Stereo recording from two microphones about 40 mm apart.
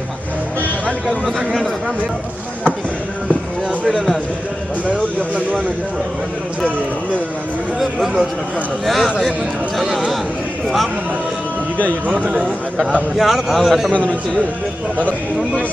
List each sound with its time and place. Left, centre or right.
3.9 s speech: centre
8.8 s a man's voice: centre
12.3 s a man's voice: right
13.2 s a man's voice: centre